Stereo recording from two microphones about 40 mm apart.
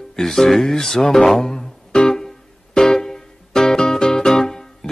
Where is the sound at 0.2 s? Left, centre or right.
Centre.